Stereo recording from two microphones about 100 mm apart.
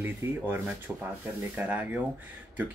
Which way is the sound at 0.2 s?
20° right (ahead or behind).